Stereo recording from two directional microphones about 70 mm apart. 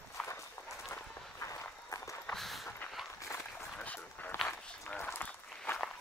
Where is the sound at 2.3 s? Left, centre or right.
Centre.